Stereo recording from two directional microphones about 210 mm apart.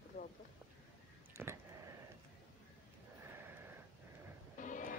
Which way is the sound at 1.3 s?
10° right (ahead or behind).